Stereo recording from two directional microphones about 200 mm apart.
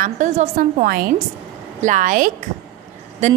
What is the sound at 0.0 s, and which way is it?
A woman's voice, 40° right (ahead or behind).